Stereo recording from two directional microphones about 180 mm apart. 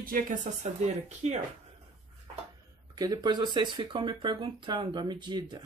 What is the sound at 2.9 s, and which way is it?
Speech, 20° right (ahead or behind).